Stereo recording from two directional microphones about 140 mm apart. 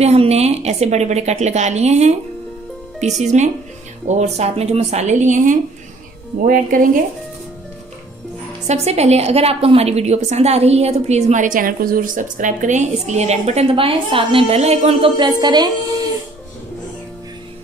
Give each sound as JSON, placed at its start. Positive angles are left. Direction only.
{"t": 0.0, "sound": "a woman's voice", "side_deg": -50}
{"t": 3.2, "sound": "a woman's voice", "side_deg": -55}
{"t": 6.4, "sound": "speech", "side_deg": -75}
{"t": 8.6, "sound": "a woman's voice", "side_deg": -50}